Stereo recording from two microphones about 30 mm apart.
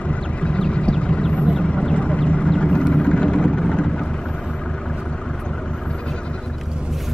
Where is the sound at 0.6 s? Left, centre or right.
Left.